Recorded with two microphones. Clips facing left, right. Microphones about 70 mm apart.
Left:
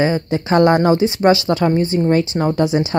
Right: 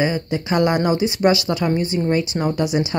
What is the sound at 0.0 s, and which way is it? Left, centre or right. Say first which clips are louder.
Speech: left 4 dB; left.